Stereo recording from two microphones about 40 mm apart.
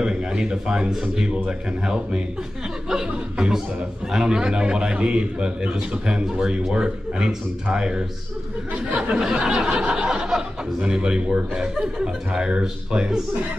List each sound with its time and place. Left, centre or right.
0.0 s speech: right
9.2 s speech: centre